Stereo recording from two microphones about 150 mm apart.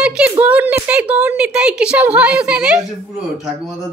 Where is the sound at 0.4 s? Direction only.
10° right (ahead or behind).